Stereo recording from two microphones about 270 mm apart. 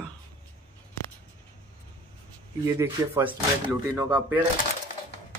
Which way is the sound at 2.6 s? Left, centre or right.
Centre.